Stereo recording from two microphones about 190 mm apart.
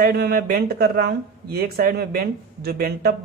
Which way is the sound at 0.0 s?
55° right (ahead or behind).